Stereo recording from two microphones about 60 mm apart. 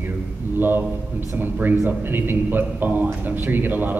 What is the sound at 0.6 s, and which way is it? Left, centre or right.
A man's voice, right.